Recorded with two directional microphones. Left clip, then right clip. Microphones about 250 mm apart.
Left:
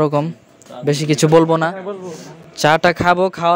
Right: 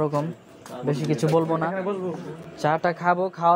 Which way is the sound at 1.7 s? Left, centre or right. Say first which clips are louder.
Left 1 dB; centre.